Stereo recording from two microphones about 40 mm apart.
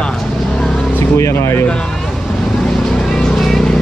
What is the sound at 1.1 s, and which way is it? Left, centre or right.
Speech, left.